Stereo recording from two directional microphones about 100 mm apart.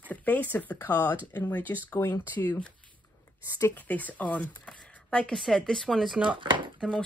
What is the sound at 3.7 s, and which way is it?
Speech, 15° left (ahead or behind).